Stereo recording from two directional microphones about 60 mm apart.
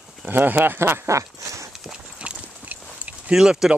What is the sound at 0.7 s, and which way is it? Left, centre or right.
Speech, right.